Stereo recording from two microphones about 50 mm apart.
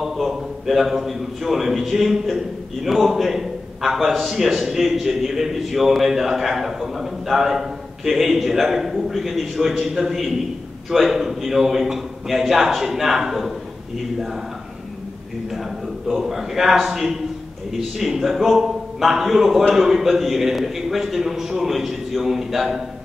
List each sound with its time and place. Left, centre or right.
0.0 s a man's voice: centre
16.1 s a man's voice: centre